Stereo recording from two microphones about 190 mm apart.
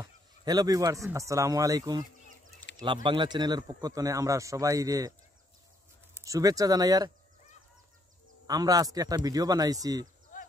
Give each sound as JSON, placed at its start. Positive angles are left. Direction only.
{"t": 0.0, "sound": "a man's voice", "side_deg": -20}
{"t": 6.1, "sound": "a man's voice", "side_deg": -15}
{"t": 8.5, "sound": "a man's voice", "side_deg": -20}
{"t": 10.3, "sound": "a sound", "side_deg": 40}